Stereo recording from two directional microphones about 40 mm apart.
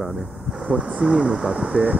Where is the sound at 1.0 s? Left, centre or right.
Right.